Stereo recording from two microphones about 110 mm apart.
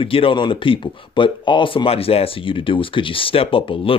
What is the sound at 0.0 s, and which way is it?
A man's voice, 55° left (ahead or behind).